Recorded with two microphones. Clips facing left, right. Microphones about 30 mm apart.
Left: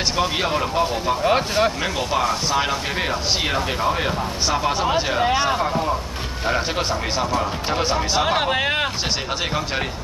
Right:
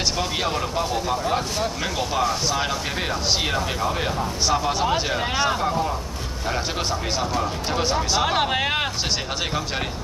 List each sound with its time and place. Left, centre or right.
0.2 s speech: centre
1.2 s speech: left
1.8 s speech: centre
6.9 s speech: centre